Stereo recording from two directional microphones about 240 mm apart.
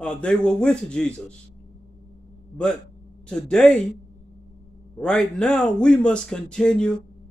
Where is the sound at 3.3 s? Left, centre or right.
Centre.